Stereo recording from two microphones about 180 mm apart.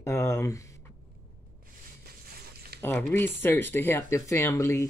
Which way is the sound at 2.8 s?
10° left (ahead or behind).